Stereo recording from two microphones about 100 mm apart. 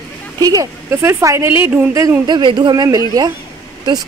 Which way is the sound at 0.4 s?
35° right (ahead or behind).